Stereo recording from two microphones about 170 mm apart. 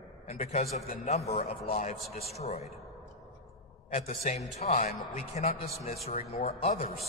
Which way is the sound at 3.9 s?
35° left (ahead or behind).